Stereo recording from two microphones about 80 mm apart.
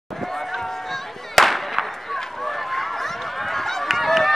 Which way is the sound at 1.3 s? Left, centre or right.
Centre.